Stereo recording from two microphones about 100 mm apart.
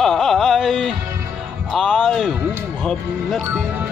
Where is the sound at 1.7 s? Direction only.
5° right (ahead or behind).